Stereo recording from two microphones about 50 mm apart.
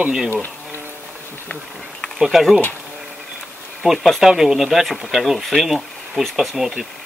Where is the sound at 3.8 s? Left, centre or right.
Centre.